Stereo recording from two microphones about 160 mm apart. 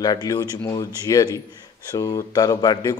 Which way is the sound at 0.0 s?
25° left (ahead or behind).